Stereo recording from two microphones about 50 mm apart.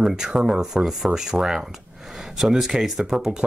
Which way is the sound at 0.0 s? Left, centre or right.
Centre.